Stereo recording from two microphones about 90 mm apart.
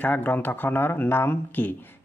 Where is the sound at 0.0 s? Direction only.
20° left (ahead or behind).